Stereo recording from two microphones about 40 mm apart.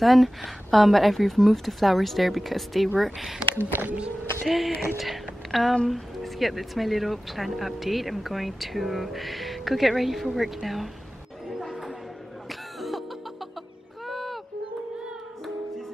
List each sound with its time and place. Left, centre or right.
0.0 s speech: centre
3.5 s speech: right
4.5 s speech: centre
11.5 s a sound: centre
12.4 s music: centre
14.0 s a sound: centre